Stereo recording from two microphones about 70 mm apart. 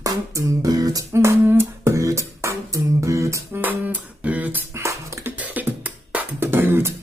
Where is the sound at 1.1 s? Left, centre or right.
Right.